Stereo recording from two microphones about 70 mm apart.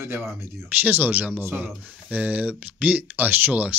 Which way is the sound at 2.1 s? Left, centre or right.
Right.